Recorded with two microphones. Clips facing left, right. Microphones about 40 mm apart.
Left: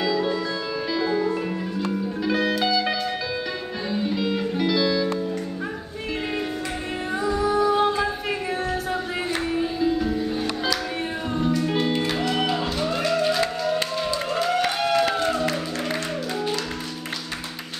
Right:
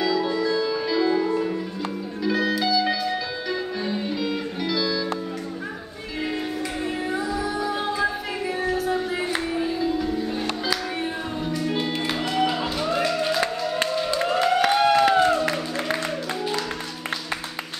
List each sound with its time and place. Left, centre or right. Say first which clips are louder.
0.0 s music: right 1 dB; centre
4.1 s music: left 2 dB; centre
7.2 s music: left 5 dB; centre
9.3 s music: even; centre
11.6 s music: left 2 dB; centre
12.1 s music: even; centre
14.1 s crowd: right 3 dB; right